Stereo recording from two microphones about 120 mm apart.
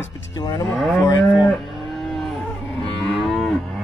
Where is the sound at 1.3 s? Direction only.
Centre (ahead or behind).